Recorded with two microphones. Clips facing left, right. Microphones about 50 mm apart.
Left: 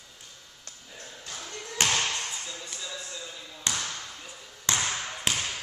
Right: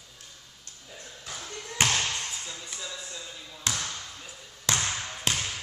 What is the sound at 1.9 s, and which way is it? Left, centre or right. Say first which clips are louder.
Basketball bounce: left 1 dB; centre.